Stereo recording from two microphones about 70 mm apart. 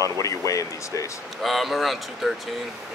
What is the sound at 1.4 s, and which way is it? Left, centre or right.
Speech, centre.